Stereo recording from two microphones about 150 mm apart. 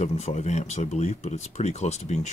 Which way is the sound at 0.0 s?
45° left (ahead or behind).